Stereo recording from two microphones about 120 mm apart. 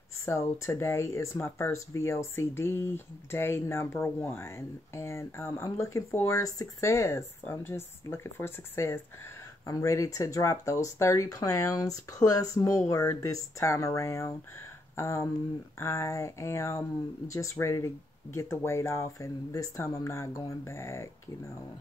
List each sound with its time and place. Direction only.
0.2 s speech: 25° left (ahead or behind)